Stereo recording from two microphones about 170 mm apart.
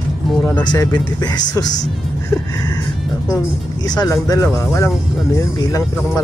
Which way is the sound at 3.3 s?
25° left (ahead or behind).